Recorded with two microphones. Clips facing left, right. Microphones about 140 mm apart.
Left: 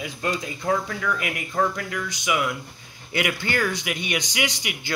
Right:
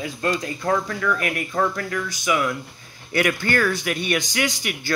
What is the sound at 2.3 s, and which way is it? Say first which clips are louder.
Speech: right 2 dB; 40° right (ahead or behind).